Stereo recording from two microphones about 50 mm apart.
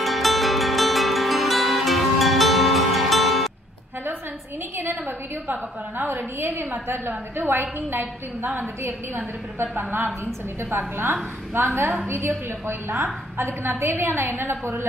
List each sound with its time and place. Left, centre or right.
0.0 s music: centre
4.7 s a woman's voice: right
11.5 s a woman's voice: right